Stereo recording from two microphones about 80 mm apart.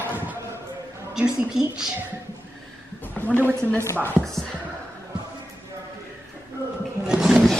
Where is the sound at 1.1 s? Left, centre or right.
Centre.